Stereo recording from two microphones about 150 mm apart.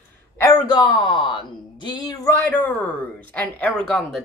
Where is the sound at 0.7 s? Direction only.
30° left (ahead or behind).